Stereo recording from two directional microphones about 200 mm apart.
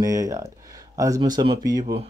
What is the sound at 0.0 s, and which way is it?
Speech, 15° right (ahead or behind).